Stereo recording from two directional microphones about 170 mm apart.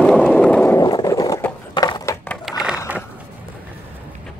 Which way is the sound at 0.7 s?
20° left (ahead or behind).